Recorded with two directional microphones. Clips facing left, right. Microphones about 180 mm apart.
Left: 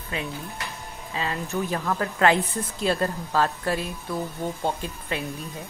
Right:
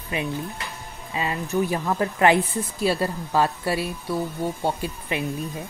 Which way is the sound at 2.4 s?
Centre (ahead or behind).